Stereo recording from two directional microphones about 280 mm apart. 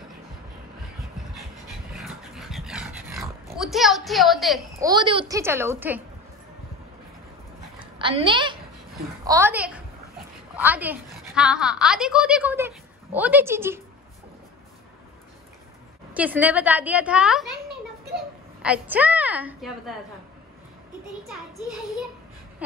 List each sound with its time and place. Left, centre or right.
2.0 s dog: centre
4.7 s a child's voice: centre
7.8 s a sound: centre
9.2 s a child's voice: centre
16.1 s a woman's voice: centre
18.6 s a woman's voice: centre
21.2 s a woman's voice: centre